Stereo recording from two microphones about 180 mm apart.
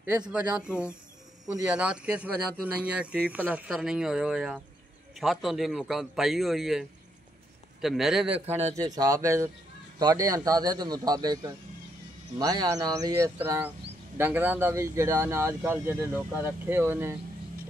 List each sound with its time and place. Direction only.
0.3 s speech: 5° right (ahead or behind)
8.7 s a man's voice: 20° right (ahead or behind)